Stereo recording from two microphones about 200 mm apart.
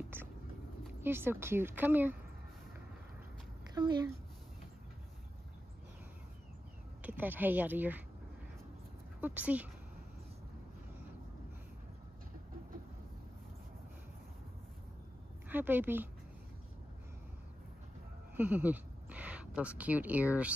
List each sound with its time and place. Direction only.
0.1 s speech: 10° right (ahead or behind)
3.7 s speech: 20° right (ahead or behind)
7.0 s speech: 10° right (ahead or behind)
9.2 s speech: 10° right (ahead or behind)
15.4 s a woman's voice: 10° right (ahead or behind)
18.3 s speech: 10° right (ahead or behind)